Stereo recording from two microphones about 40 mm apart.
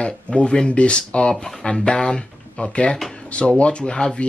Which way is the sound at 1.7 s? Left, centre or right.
Left.